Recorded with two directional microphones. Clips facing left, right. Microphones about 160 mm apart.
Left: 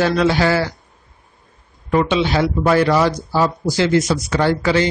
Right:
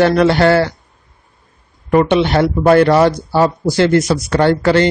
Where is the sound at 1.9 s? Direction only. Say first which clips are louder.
Right 5 dB; 55° right (ahead or behind).